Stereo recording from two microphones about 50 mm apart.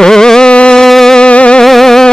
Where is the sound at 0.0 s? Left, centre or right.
Centre.